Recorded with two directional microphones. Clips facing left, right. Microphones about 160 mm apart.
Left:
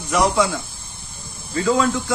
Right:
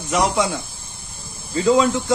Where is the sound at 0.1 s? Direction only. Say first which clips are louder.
Left 1 dB; 20° right (ahead or behind).